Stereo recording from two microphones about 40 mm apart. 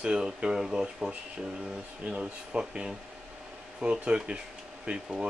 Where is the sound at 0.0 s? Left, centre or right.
Right.